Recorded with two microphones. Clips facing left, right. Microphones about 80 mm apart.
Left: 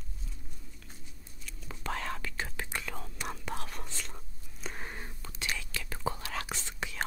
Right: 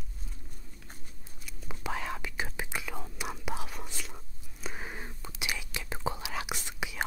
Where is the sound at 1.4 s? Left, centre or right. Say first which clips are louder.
Right 1 dB; centre.